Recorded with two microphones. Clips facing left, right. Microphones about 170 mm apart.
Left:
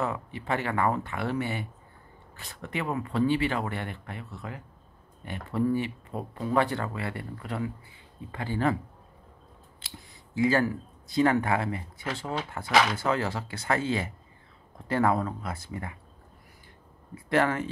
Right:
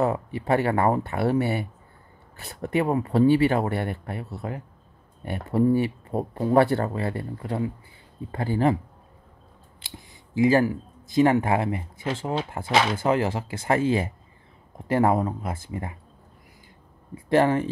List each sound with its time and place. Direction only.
0.0 s speech: 35° right (ahead or behind)
9.9 s speech: 20° right (ahead or behind)
17.3 s speech: 30° right (ahead or behind)